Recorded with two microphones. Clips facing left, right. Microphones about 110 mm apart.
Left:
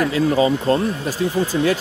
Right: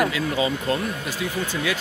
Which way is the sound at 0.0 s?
35° left (ahead or behind).